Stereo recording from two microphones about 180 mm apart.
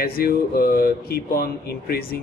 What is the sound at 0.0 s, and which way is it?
Speech, 55° left (ahead or behind).